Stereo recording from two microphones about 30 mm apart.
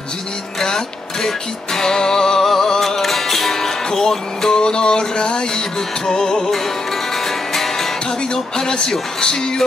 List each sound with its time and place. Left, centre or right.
0.6 s music: centre
3.0 s music: centre; by 5.6 s left
6.0 s music: centre
6.3 s music: centre
8.3 s music: left